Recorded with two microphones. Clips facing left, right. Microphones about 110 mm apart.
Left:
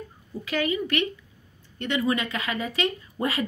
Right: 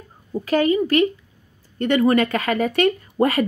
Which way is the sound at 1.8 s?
50° right (ahead or behind).